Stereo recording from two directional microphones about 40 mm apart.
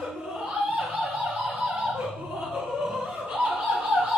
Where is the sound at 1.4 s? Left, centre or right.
Right.